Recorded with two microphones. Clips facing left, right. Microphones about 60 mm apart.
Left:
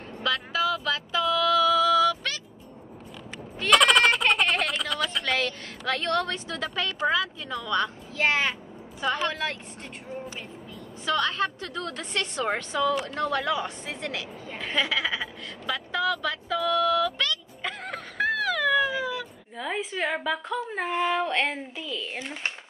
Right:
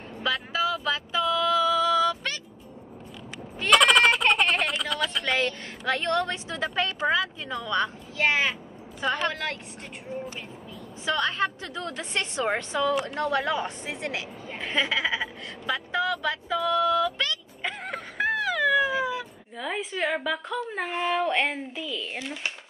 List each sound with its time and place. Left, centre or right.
0.2 s a sound: centre
1.4 s music: centre
3.5 s a sound: centre
5.4 s a woman's voice: right
8.2 s a woman's voice: centre
11.1 s a woman's voice: right
14.5 s a sound: centre
14.8 s a woman's voice: centre
15.9 s a woman's voice: right
16.5 s a woman's voice: centre
16.8 s music: centre
19.5 s a woman's voice: centre
22.2 s speech: left